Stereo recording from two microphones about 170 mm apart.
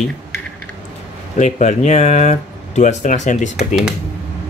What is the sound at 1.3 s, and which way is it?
Speech, 45° left (ahead or behind).